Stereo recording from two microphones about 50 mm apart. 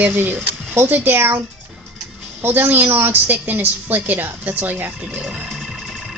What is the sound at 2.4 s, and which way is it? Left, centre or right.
A woman's voice, right.